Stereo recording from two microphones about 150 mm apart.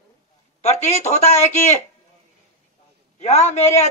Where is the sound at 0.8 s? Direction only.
45° left (ahead or behind).